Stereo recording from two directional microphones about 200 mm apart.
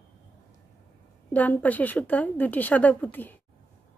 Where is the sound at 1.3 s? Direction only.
10° left (ahead or behind).